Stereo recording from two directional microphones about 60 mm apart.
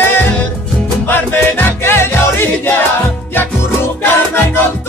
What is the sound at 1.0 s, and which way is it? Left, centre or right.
Music, left.